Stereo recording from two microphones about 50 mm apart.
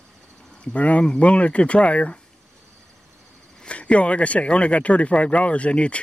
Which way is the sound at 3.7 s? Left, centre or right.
Left.